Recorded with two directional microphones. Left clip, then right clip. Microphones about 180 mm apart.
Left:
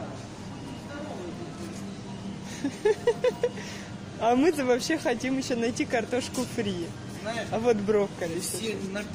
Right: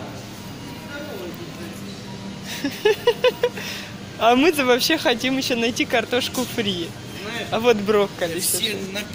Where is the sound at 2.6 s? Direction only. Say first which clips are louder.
Right 6 dB; centre (ahead or behind).